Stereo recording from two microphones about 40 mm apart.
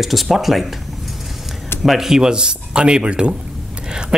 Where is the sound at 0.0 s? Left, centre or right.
Centre.